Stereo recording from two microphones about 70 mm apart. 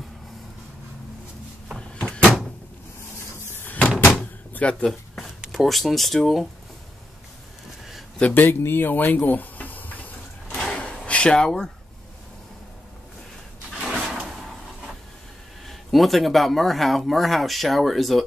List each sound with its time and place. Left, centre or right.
1.8 s door: centre
3.6 s door: left
4.2 s vehicle: centre
5.5 s speech: centre
8.2 s speech: centre
8.5 s a sound: left
10.6 s a sound: centre
13.7 s a sound: centre
15.6 s speech: centre